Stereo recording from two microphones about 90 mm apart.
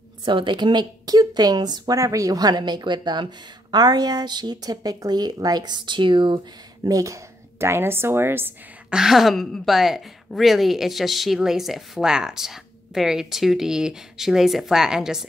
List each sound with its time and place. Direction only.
0.2 s speech: 60° right (ahead or behind)
6.8 s speech: 40° right (ahead or behind)
8.9 s a woman's voice: 5° right (ahead or behind)